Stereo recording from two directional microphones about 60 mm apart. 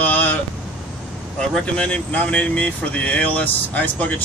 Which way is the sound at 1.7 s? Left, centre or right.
Centre.